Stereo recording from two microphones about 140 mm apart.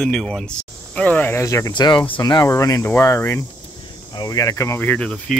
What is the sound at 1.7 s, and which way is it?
Speech, 35° left (ahead or behind).